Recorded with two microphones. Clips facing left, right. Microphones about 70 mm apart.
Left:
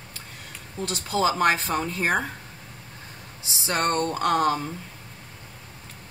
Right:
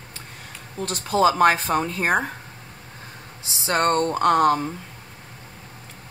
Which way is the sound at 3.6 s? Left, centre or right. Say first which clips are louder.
Right 4 dB; right.